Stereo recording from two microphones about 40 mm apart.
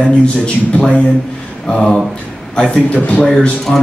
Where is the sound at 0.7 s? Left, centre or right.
Left.